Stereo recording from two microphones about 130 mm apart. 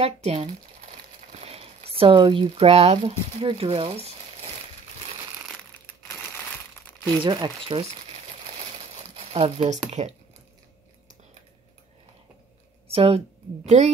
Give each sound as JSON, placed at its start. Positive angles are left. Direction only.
{"t": 0.0, "sound": "speech", "side_deg": -50}
{"t": 7.2, "sound": "speech", "side_deg": -35}
{"t": 8.9, "sound": "a sound", "side_deg": -60}
{"t": 9.8, "sound": "speech", "side_deg": -55}
{"t": 12.8, "sound": "speech", "side_deg": -50}
{"t": 13.7, "sound": "speech", "side_deg": -60}